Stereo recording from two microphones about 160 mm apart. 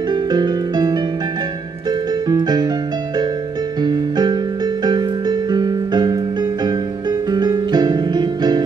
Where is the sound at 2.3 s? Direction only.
25° right (ahead or behind).